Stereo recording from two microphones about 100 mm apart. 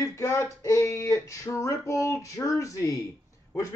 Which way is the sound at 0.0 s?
30° left (ahead or behind).